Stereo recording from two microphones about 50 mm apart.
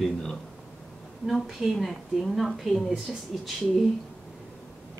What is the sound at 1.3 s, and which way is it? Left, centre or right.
Speech, centre.